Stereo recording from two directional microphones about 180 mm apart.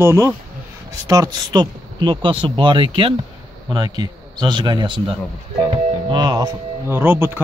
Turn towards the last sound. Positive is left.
turn(degrees=-10)  # may be behind; listen again after turning